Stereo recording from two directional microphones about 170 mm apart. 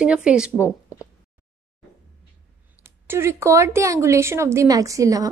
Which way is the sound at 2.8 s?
15° right (ahead or behind).